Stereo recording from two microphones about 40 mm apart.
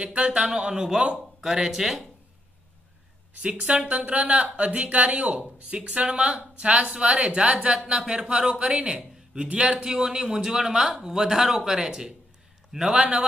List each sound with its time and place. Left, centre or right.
0.0 s a woman's voice: right; by 2.0 s centre
3.3 s a woman's voice: right
3.9 s a woman's voice: right; by 12.1 s centre
12.9 s speech: right